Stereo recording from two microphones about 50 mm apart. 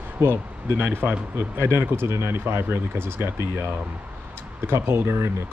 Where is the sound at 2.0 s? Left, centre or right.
Right.